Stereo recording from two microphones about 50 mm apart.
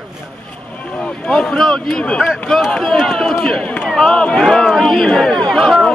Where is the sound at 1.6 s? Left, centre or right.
Centre.